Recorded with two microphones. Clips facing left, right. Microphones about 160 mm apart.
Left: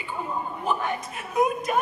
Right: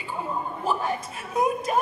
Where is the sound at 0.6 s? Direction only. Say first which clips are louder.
Right 1 dB; 30° right (ahead or behind).